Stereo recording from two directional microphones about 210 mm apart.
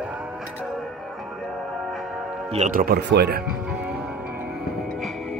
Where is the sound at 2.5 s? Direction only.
40° right (ahead or behind).